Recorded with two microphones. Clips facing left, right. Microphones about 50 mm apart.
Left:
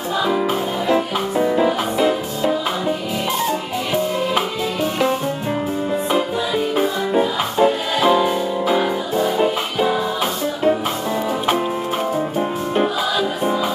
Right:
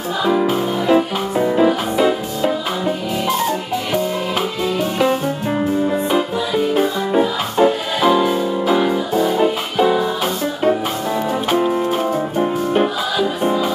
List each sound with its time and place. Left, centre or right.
0.2 s music: centre
6.8 s music: centre
8.0 s music: centre
11.4 s music: centre